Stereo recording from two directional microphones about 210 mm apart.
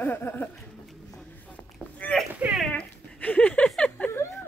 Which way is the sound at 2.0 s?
5° left (ahead or behind).